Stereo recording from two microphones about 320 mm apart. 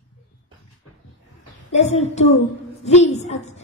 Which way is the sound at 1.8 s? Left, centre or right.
Centre.